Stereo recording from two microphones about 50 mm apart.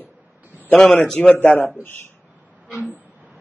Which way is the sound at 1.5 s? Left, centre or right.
Left.